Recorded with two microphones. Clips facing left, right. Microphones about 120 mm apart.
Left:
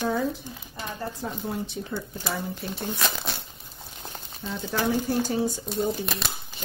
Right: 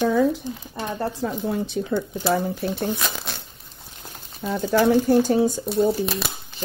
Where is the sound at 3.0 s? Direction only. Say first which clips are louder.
Even; centre (ahead or behind).